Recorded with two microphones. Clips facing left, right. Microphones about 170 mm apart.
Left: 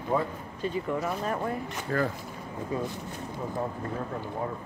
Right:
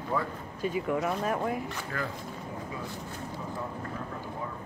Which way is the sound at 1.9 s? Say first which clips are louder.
Left 9 dB; 40° left (ahead or behind).